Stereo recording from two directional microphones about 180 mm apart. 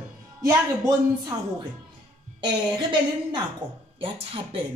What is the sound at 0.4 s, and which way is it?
Speech, 20° right (ahead or behind).